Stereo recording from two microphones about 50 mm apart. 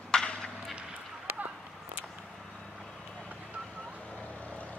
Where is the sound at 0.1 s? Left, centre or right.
Centre.